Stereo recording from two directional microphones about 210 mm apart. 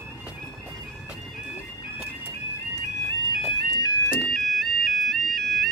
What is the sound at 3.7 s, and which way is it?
Music, 15° left (ahead or behind).